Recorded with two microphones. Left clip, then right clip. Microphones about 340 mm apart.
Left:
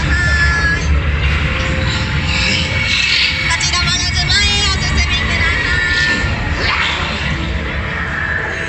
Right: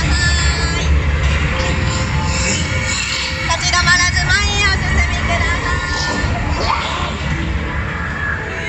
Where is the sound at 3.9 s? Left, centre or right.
Right.